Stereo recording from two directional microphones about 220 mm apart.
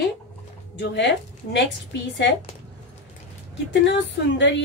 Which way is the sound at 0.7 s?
50° left (ahead or behind).